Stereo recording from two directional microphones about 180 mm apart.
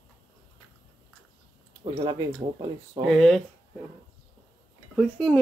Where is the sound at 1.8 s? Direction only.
30° right (ahead or behind).